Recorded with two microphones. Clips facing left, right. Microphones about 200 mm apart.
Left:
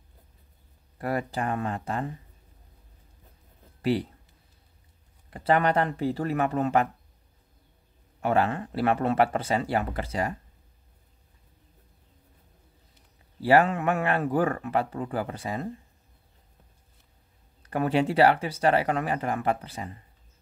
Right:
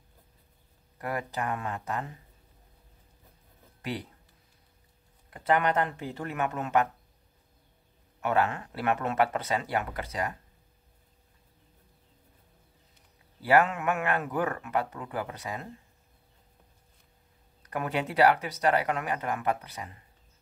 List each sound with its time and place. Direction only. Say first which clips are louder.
0.9 s speech: left 4 dB; 30° left (ahead or behind)
3.8 s speech: left 10 dB; 30° left (ahead or behind)
5.3 s speech: left 3 dB; 30° left (ahead or behind)
8.2 s speech: left 3 dB; 30° left (ahead or behind)
13.4 s speech: left 3 dB; 30° left (ahead or behind)
17.6 s speech: left 7 dB; 30° left (ahead or behind)